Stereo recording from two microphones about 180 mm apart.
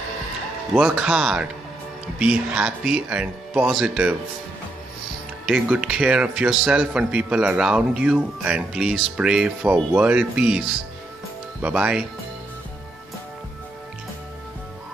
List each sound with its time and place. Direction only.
0.7 s a man's voice: 5° right (ahead or behind)
5.5 s a man's voice: 5° right (ahead or behind)
11.6 s speech: 5° right (ahead or behind)